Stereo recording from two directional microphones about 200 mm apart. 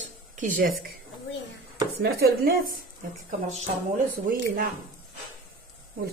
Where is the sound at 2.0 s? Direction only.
50° right (ahead or behind).